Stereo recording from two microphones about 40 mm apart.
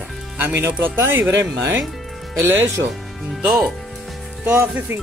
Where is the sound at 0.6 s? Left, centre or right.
Right.